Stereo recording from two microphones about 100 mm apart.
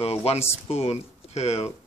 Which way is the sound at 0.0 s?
90° left.